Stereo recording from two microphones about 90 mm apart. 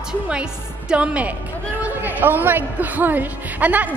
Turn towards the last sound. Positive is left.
turn(degrees=-20)  # may be behind; listen again after turning